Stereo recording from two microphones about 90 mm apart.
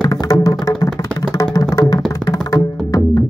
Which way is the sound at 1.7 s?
45° left (ahead or behind).